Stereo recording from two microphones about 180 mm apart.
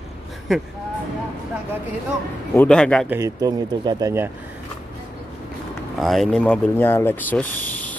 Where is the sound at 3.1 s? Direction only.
20° right (ahead or behind).